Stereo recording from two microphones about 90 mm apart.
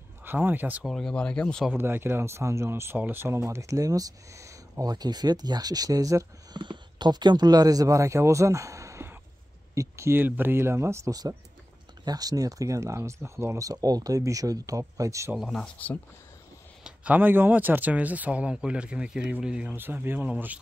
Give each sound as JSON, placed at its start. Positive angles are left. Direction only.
{"t": 0.2, "sound": "speech", "side_deg": -20}
{"t": 0.8, "sound": "speech", "side_deg": 5}
{"t": 1.7, "sound": "speech", "side_deg": -25}
{"t": 6.5, "sound": "speech", "side_deg": -60}
{"t": 11.1, "sound": "speech", "side_deg": -45}
{"t": 15.5, "sound": "speech", "side_deg": 10}
{"t": 16.8, "sound": "speech", "side_deg": -15}